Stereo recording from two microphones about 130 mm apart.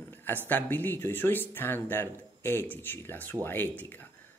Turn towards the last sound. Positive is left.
turn(degrees=15)  # may be behind; listen again after turning